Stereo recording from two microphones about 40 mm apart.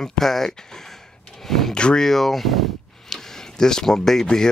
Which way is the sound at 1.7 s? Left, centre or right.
Left.